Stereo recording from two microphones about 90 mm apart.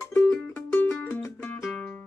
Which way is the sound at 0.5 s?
20° left (ahead or behind).